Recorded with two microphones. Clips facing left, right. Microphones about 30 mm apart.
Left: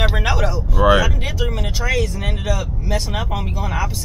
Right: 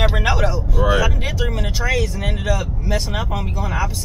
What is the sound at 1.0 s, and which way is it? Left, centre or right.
Speech, centre.